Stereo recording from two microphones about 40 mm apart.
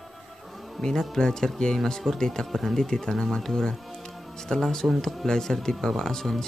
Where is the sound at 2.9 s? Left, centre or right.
Centre.